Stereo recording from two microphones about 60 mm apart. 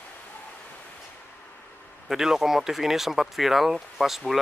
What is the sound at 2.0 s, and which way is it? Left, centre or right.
Speech, centre.